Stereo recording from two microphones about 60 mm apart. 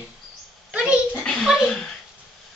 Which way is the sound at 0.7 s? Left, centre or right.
Centre.